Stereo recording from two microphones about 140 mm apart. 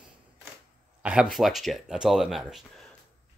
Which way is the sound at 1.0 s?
5° right (ahead or behind).